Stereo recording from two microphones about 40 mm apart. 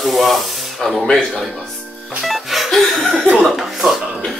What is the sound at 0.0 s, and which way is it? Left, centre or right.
Spray, centre.